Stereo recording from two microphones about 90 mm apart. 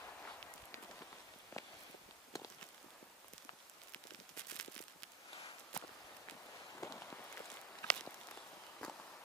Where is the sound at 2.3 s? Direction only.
40° left (ahead or behind).